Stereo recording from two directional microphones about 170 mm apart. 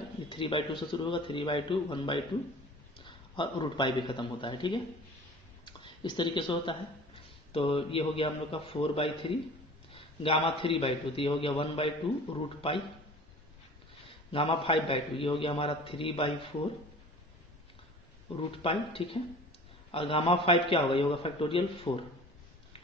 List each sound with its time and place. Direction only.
0.3 s a man's voice: 30° left (ahead or behind)
14.3 s a man's voice: 30° left (ahead or behind)
18.5 s a man's voice: 35° left (ahead or behind)